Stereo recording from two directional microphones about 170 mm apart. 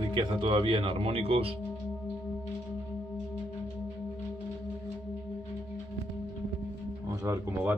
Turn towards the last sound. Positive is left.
turn(degrees=-15)  # may be behind; listen again after turning